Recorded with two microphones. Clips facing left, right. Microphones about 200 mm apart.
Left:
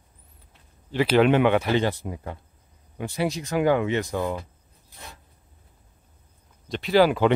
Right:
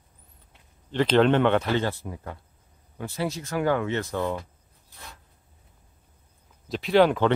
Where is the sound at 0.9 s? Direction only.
10° left (ahead or behind).